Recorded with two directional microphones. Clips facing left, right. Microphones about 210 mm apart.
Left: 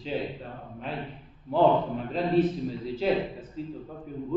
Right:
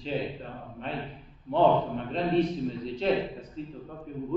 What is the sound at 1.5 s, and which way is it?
A man's voice, 5° left (ahead or behind).